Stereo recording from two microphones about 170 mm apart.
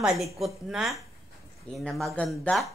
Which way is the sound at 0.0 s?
Centre (ahead or behind).